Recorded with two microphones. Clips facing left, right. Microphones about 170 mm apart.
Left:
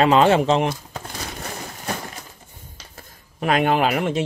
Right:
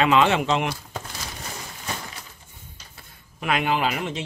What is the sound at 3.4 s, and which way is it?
Speech, 45° left (ahead or behind).